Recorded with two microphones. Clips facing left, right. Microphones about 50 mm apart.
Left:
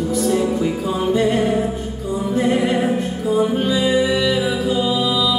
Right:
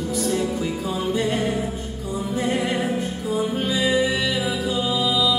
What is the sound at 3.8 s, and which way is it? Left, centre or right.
Music, centre.